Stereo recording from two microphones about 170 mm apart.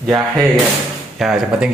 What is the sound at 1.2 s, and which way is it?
Speech, centre (ahead or behind).